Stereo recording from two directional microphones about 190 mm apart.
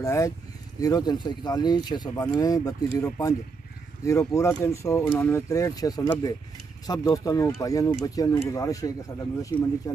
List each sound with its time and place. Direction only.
0.0 s speech: 15° left (ahead or behind)